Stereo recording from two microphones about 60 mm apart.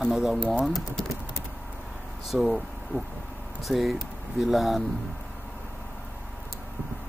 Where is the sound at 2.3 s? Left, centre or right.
Right.